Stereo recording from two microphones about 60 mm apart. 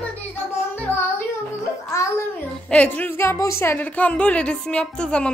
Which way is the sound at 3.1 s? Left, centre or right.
Left.